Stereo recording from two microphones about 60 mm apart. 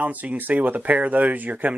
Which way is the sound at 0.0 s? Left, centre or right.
Right.